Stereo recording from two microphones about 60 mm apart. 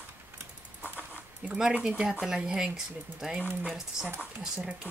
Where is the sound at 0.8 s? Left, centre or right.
Left.